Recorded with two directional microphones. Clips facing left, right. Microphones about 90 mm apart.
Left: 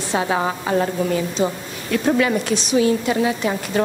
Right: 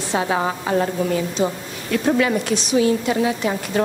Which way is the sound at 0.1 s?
5° right (ahead or behind).